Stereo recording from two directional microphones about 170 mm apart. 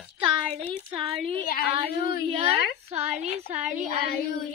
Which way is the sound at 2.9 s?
40° right (ahead or behind).